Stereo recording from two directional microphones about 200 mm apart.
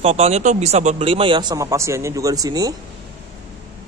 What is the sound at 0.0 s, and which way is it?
Speech, 30° right (ahead or behind).